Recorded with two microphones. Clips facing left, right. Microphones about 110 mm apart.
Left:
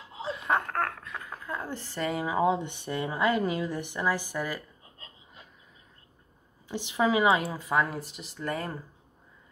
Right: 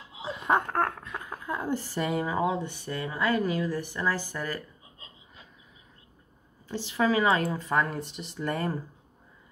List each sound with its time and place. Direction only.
0.5 s a sound: 20° right (ahead or behind)
1.3 s speech: 10° right (ahead or behind)
2.4 s speech: 20° left (ahead or behind)
6.7 s speech: 20° left (ahead or behind); by 8.7 s centre (ahead or behind)